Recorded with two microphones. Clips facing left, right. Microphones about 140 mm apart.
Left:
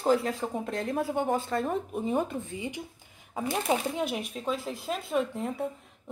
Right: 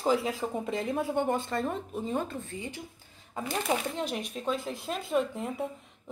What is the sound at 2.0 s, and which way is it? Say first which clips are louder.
Speech: left 2 dB; 15° left (ahead or behind).